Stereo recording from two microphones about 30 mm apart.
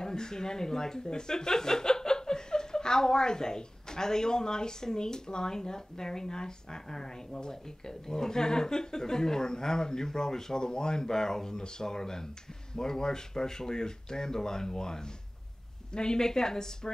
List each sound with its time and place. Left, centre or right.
0.0 s speech: left